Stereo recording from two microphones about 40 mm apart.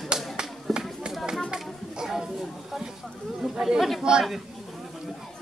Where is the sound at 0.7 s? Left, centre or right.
Centre.